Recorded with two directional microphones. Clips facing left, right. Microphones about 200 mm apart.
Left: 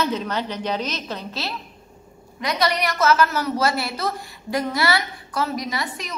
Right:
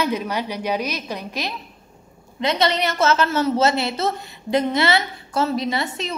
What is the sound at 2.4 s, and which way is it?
A woman's voice, 25° right (ahead or behind).